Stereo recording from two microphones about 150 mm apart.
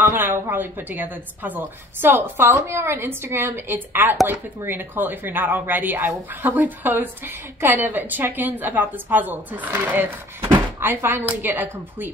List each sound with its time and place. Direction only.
0.0 s speech: 15° right (ahead or behind)